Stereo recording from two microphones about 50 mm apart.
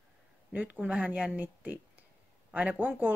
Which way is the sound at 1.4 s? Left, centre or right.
Right.